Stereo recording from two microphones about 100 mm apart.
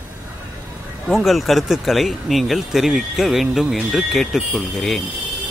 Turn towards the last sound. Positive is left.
turn(degrees=5)  # may be behind; listen again after turning